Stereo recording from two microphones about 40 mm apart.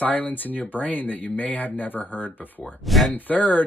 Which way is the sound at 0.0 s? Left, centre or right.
Left.